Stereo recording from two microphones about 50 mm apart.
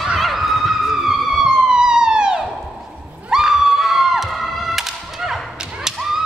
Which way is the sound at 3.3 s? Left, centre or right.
Centre.